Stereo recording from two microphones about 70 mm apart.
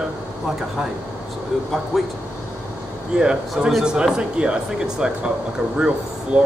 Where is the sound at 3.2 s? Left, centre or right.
Centre.